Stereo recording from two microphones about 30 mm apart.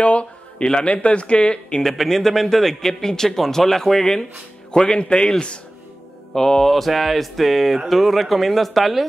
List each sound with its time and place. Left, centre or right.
0.0 s a sound: left
1.0 s speech: left
1.9 s speech: centre
4.6 s speech: left
6.3 s speech: centre
6.7 s a sound: centre